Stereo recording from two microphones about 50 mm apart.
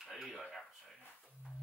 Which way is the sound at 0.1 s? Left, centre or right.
Centre.